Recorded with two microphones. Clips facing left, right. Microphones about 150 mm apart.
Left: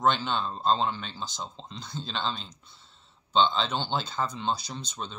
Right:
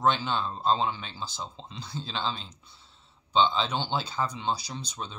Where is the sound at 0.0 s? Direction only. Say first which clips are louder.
Even; 5° right (ahead or behind).